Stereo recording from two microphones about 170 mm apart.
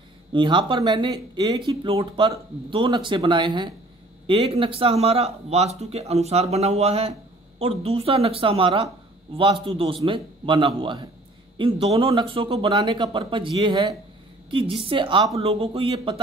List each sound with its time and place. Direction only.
0.3 s speech: 30° right (ahead or behind)